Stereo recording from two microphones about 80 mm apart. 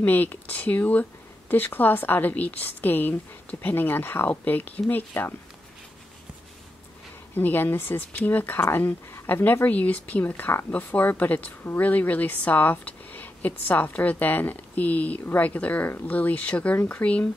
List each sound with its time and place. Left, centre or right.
0.0 s speech: left
7.3 s speech: left